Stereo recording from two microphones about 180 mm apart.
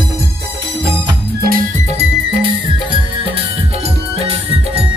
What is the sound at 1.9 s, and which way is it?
Music, 35° right (ahead or behind).